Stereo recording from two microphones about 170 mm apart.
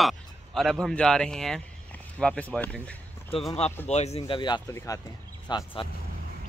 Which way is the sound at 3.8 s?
40° left (ahead or behind).